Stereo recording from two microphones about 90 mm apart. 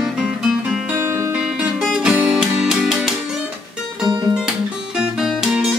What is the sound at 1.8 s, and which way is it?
Music, 10° right (ahead or behind).